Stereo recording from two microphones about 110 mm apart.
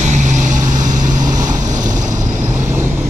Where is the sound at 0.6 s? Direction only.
35° right (ahead or behind).